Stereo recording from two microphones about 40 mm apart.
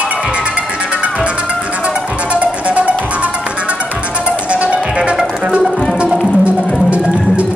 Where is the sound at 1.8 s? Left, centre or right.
Right.